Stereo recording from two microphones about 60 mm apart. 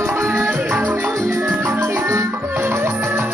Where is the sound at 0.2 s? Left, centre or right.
Right.